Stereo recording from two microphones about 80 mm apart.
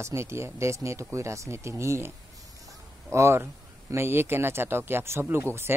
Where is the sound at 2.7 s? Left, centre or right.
Right.